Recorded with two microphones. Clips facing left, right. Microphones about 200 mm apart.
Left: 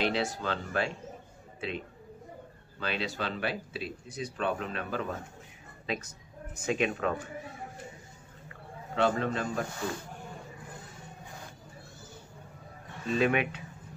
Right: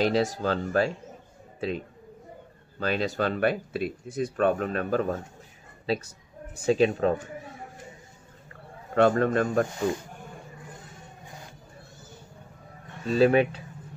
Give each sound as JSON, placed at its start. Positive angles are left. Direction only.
{"t": 0.0, "sound": "speech", "side_deg": -40}
{"t": 2.8, "sound": "a man's voice", "side_deg": -45}
{"t": 4.0, "sound": "speech", "side_deg": 0}
{"t": 4.4, "sound": "a man's voice", "side_deg": -45}
{"t": 8.9, "sound": "a man's voice", "side_deg": -50}
{"t": 9.8, "sound": "speech", "side_deg": -20}
{"t": 13.0, "sound": "speech", "side_deg": -35}